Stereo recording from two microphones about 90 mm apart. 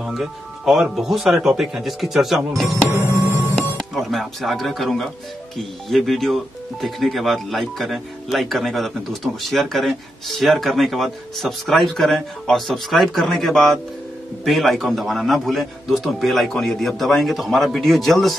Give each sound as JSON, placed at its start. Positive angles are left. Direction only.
{"t": 0.0, "sound": "speech", "side_deg": -5}
{"t": 2.9, "sound": "music", "side_deg": -35}
{"t": 3.7, "sound": "speech", "side_deg": 0}